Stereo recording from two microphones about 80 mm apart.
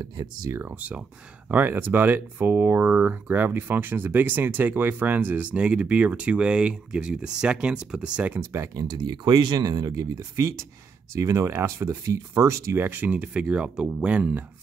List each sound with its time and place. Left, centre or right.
0.0 s speech: right
0.5 s speech: right
8.4 s speech: right
8.9 s speech: right
12.7 s speech: right